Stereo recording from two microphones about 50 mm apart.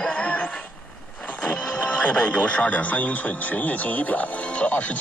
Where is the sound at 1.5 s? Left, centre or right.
Left.